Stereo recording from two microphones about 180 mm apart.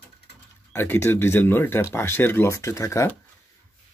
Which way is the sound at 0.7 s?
15° left (ahead or behind).